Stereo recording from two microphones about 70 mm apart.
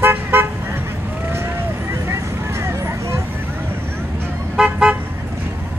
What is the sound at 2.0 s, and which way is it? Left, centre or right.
Vehicle, right.